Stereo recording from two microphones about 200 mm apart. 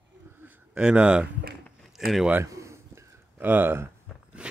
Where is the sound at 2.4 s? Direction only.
15° right (ahead or behind).